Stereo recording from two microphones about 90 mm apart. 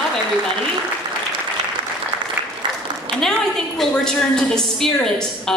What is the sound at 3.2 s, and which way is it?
A woman's voice, 5° left (ahead or behind).